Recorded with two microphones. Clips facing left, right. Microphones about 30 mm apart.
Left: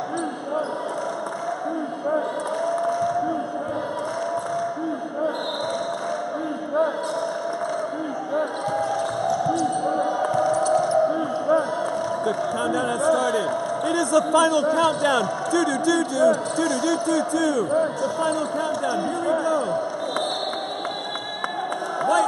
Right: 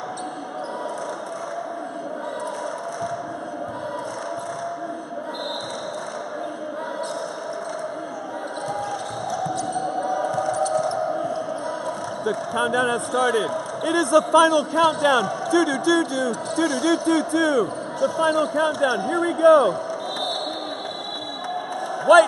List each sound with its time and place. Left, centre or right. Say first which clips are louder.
9.3 s basketball bounce: left 2 dB; centre
10.5 s a sound: left 2 dB; centre
12.5 s speech: right 2 dB; right
13.1 s a man's voice: even; centre
16.9 s speech: right 2 dB; right
17.7 s speech: left 1 dB; centre
18.6 s speech: right 4 dB; right
18.9 s speech: right 1 dB; centre
19.3 s a man's voice: right 11 dB; right
22.1 s speech: right 8 dB; right